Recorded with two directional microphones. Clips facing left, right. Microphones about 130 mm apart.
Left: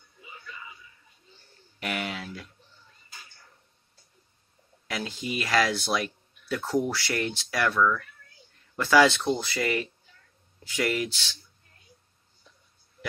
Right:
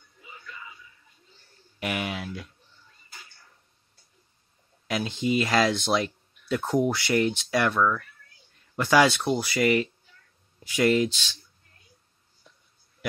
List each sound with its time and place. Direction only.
1.8 s speech: 20° right (ahead or behind)
4.8 s speech: 20° right (ahead or behind)